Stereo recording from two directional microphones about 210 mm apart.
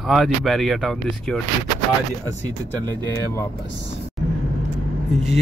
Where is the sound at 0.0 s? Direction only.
Centre (ahead or behind).